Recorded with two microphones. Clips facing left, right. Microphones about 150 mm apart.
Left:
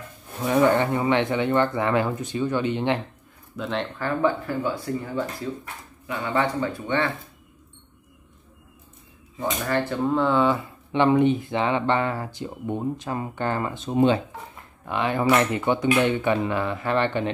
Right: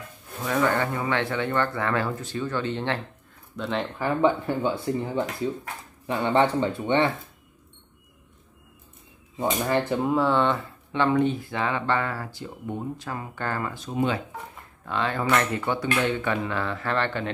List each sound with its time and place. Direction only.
0.5 s speech: 20° left (ahead or behind)
3.5 s speech: centre (ahead or behind)
3.8 s speech: 15° right (ahead or behind)
4.4 s speech: 25° right (ahead or behind)
9.7 s speech: 20° right (ahead or behind)
10.1 s speech: centre (ahead or behind)
10.9 s speech: 20° left (ahead or behind)